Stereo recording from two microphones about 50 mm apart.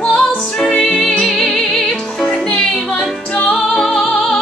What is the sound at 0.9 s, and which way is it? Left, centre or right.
Music, centre.